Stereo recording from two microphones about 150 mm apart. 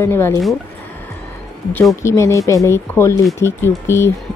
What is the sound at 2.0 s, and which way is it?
Speech, 20° left (ahead or behind).